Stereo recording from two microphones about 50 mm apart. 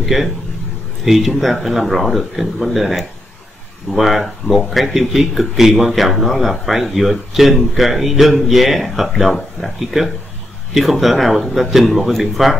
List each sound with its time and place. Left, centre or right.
0.0 s speech: centre